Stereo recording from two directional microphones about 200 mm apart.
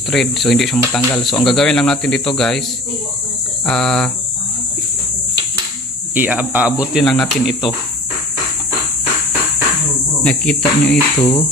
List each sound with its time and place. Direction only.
0.1 s speech: centre (ahead or behind)
3.6 s speech: 5° left (ahead or behind)
6.1 s speech: 10° right (ahead or behind)
10.2 s speech: 5° left (ahead or behind)
11.1 s music: 25° left (ahead or behind)